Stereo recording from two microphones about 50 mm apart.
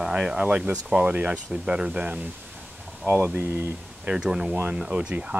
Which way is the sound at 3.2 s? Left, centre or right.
Right.